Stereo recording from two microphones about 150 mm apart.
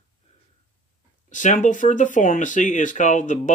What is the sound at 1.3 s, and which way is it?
Speech, 55° left (ahead or behind).